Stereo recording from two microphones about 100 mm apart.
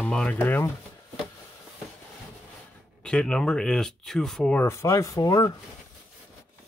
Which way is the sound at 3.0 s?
10° left (ahead or behind).